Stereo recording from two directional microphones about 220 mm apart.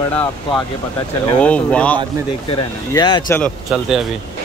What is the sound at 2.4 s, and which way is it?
Speech, 20° left (ahead or behind).